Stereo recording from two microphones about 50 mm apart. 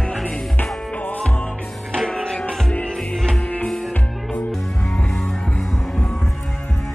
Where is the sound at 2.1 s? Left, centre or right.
Centre.